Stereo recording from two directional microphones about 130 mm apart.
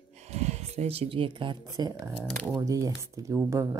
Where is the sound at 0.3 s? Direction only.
55° right (ahead or behind).